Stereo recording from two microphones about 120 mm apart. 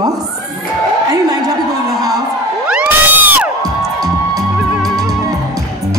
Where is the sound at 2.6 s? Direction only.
10° right (ahead or behind).